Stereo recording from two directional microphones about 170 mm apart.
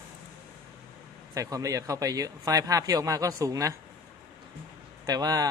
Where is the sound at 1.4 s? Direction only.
20° right (ahead or behind).